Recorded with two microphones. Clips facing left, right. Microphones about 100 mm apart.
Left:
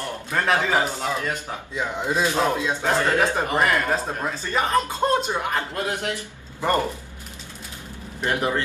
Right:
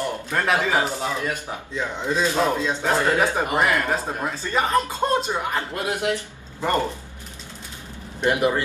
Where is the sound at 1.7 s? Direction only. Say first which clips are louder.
Even; 15° left (ahead or behind).